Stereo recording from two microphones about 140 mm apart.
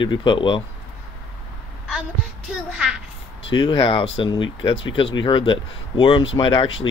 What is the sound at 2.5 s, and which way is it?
Speech, 5° right (ahead or behind).